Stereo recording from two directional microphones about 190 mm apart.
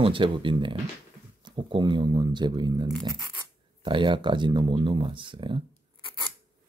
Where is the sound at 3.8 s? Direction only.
25° right (ahead or behind).